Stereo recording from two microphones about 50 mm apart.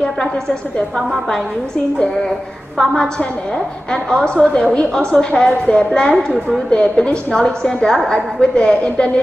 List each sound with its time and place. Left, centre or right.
2.8 s a woman's voice: centre